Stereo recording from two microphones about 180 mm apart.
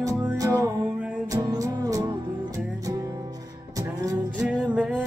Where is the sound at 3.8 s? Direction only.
20° right (ahead or behind).